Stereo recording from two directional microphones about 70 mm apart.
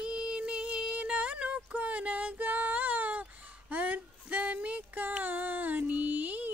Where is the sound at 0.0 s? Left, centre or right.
Centre.